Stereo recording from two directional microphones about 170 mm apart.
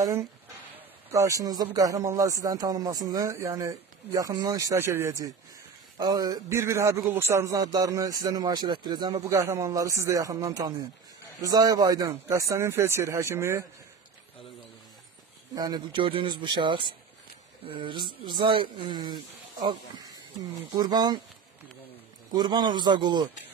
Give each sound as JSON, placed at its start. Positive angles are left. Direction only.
{"t": 0.0, "sound": "a man's voice", "side_deg": -15}
{"t": 15.5, "sound": "a man's voice", "side_deg": -25}
{"t": 20.7, "sound": "a man's voice", "side_deg": -25}
{"t": 22.3, "sound": "a man's voice", "side_deg": -25}